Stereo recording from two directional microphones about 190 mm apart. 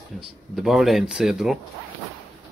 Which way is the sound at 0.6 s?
Centre (ahead or behind).